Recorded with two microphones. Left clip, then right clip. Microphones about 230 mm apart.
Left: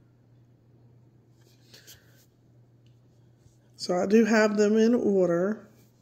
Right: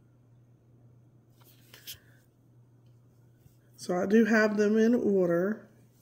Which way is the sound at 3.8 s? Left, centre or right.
Centre.